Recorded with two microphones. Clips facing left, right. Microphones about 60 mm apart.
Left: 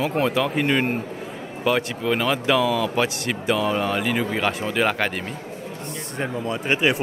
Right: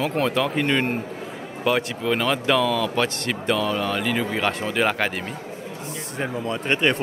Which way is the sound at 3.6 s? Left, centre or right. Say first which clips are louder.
Left 2 dB; left.